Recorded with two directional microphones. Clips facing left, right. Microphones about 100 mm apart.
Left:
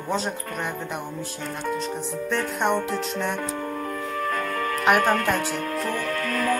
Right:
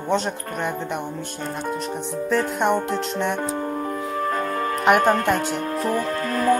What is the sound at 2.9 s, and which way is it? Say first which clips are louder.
Speech: right 3 dB; centre (ahead or behind).